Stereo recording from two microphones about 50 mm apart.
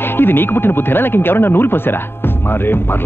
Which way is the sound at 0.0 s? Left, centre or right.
Left.